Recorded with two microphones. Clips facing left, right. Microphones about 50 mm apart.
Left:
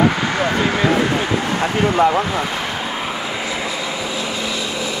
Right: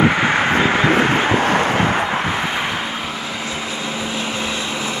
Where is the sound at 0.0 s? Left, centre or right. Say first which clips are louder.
Right 2 dB; right.